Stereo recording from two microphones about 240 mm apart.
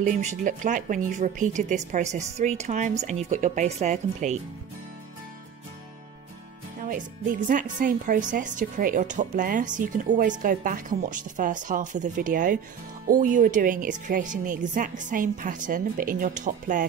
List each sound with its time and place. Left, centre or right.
0.0 s speech: right
6.8 s speech: right